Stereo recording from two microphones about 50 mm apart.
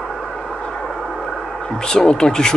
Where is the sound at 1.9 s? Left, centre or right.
Centre.